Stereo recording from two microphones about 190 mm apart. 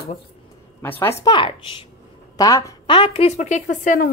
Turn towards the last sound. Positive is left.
turn(degrees=45)  # may be behind; listen again after turning